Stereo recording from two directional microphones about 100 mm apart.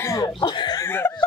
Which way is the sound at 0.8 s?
20° left (ahead or behind).